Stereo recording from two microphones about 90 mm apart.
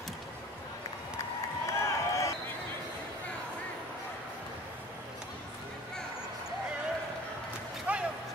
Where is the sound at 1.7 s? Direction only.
35° left (ahead or behind).